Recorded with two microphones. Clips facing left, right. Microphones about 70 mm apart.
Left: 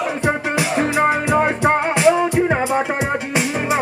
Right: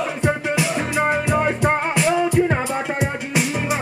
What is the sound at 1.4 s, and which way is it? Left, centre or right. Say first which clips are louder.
Music: left 3 dB; centre.